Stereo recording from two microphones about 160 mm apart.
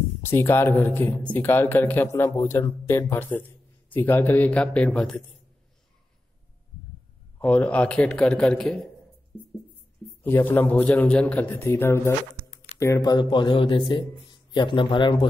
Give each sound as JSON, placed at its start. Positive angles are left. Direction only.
{"t": 0.2, "sound": "a man's voice", "side_deg": 15}
{"t": 7.3, "sound": "a man's voice", "side_deg": 10}
{"t": 10.2, "sound": "a man's voice", "side_deg": 15}